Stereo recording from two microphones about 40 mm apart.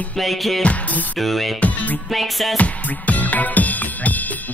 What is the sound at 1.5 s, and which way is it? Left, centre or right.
Music, left.